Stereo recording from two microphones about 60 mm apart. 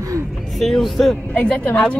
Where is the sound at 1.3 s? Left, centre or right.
Left.